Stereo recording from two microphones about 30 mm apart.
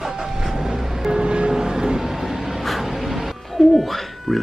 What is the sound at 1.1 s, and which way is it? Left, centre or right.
Music, right.